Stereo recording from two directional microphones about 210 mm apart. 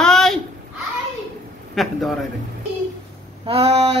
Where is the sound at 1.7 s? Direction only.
Centre (ahead or behind).